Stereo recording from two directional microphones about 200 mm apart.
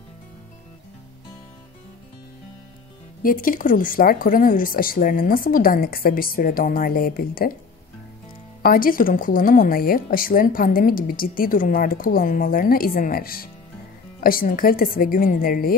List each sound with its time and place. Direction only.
3.2 s speech: 45° left (ahead or behind)
8.6 s speech: 45° left (ahead or behind)